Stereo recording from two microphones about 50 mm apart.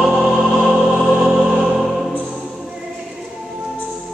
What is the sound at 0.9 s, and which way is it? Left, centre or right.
Music, right.